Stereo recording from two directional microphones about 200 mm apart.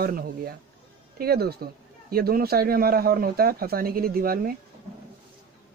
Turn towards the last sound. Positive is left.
turn(degrees=-45)  # may be behind; listen again after turning